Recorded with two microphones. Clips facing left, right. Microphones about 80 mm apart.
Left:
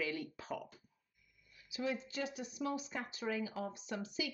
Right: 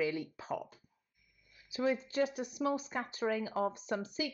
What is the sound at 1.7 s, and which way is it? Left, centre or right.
Speech, right.